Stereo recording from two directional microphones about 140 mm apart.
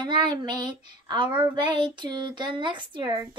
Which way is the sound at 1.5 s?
35° right (ahead or behind).